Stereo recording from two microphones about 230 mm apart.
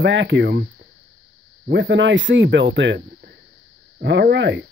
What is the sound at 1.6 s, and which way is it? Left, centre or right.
Speech, right.